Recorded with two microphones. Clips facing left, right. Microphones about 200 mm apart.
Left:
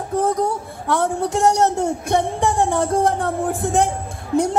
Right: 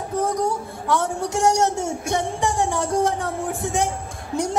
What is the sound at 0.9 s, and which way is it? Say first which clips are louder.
Music: left 3 dB; 60° left (ahead or behind).